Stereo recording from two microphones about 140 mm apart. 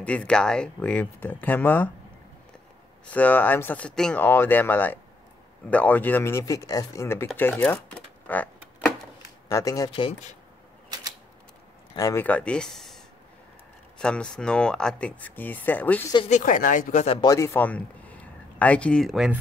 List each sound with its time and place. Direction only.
0.0 s speech: 10° left (ahead or behind)
3.1 s speech: 10° left (ahead or behind)
8.3 s a sound: 10° left (ahead or behind)
9.5 s speech: 25° left (ahead or behind)
11.9 s speech: 25° left (ahead or behind)
12.3 s speech: 10° left (ahead or behind)
16.3 s speech: 65° left (ahead or behind)
17.2 s speech: 25° left (ahead or behind); by 19.4 s 5° right (ahead or behind)